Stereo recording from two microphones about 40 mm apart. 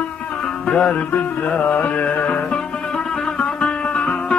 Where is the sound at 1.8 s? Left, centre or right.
Left.